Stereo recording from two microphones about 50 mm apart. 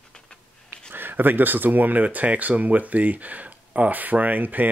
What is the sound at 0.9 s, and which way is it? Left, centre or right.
Speech, right.